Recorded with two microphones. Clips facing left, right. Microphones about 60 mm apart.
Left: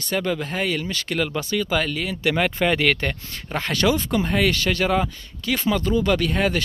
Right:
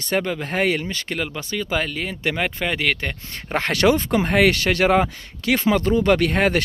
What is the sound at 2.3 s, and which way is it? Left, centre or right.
Speech, centre.